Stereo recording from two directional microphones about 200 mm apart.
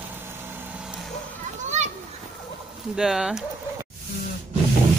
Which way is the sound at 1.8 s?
35° right (ahead or behind).